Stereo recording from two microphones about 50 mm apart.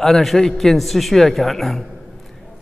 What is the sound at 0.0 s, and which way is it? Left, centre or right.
A man's voice, centre.